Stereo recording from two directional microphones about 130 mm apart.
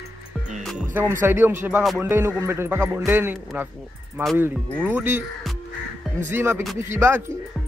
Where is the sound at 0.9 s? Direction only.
20° right (ahead or behind).